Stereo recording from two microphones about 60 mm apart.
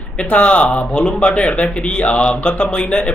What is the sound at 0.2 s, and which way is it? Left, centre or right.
Speech, left.